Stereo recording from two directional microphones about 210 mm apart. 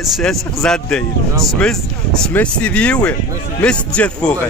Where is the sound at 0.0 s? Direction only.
Centre (ahead or behind).